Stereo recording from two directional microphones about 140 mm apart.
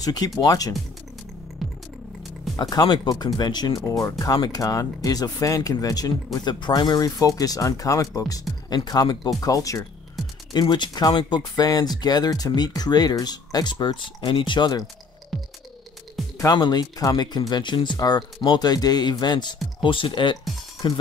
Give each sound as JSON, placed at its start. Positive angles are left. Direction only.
{"t": 0.0, "sound": "speech", "side_deg": 30}
{"t": 1.6, "sound": "music", "side_deg": 0}
{"t": 2.5, "sound": "speech", "side_deg": 25}
{"t": 16.3, "sound": "speech", "side_deg": 30}